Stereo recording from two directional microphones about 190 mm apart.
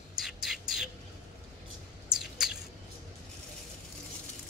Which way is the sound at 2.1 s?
Centre (ahead or behind).